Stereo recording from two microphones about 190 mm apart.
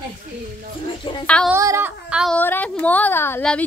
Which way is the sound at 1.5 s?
15° right (ahead or behind).